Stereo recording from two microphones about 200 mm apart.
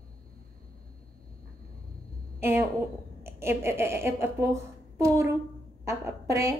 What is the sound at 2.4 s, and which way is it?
A woman's voice, 10° right (ahead or behind).